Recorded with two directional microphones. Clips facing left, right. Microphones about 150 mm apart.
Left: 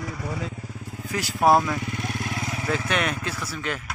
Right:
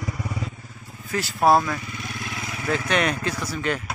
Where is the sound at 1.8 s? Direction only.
55° left (ahead or behind); by 2.7 s 35° left (ahead or behind).